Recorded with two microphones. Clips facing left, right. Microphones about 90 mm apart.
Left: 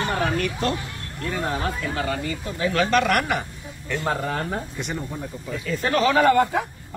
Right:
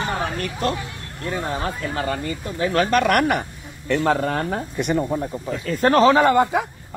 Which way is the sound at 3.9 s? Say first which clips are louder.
Right 6 dB; 85° right.